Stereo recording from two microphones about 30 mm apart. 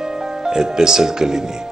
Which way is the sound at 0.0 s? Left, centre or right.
Centre.